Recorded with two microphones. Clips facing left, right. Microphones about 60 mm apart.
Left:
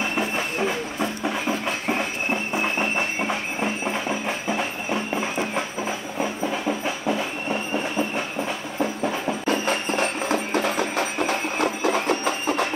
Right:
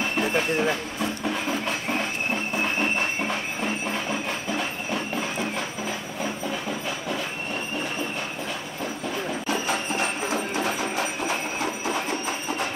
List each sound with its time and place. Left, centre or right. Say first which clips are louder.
1.2 s train: left 2 dB; centre
2.5 s a sound: even; centre
9.5 s music: left 4 dB; left